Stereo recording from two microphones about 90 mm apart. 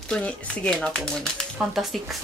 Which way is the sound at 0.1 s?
10° left (ahead or behind).